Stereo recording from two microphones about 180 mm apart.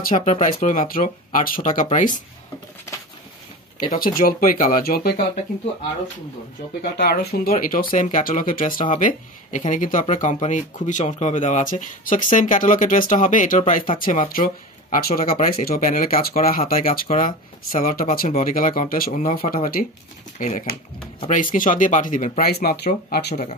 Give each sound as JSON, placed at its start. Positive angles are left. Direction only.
{"t": 0.1, "sound": "speech", "side_deg": 40}
{"t": 3.9, "sound": "speech", "side_deg": 50}
{"t": 6.8, "sound": "speech", "side_deg": 60}
{"t": 22.5, "sound": "speech", "side_deg": 60}